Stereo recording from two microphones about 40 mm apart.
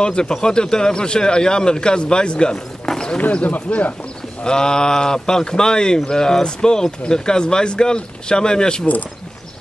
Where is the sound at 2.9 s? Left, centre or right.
Centre.